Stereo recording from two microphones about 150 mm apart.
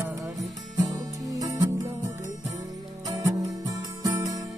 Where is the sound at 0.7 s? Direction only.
25° right (ahead or behind).